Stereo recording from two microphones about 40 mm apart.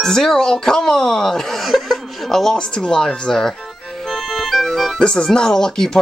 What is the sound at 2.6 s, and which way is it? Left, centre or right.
Speech, centre.